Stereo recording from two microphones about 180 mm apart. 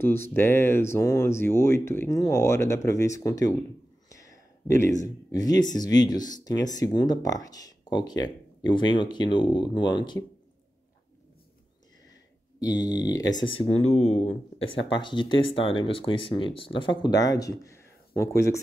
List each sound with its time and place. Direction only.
0.0 s speech: 10° left (ahead or behind)
4.6 s speech: 15° left (ahead or behind)
12.5 s speech: 20° left (ahead or behind)
13.6 s speech: 35° left (ahead or behind)
14.9 s speech: 25° left (ahead or behind)